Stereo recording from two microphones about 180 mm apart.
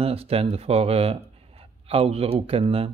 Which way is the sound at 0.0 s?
35° right (ahead or behind).